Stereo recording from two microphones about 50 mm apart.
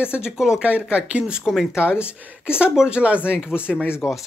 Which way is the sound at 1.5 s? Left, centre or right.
Centre.